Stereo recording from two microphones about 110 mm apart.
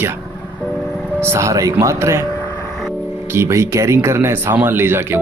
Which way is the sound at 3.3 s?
25° right (ahead or behind).